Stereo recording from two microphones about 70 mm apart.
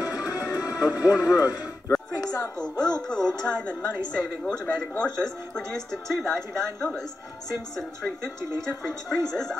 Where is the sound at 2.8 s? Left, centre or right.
Left.